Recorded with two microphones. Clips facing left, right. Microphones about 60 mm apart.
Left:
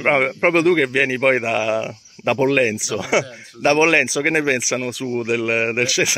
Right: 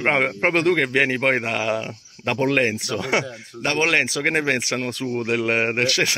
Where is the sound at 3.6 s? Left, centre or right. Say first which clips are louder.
Left 5 dB; left.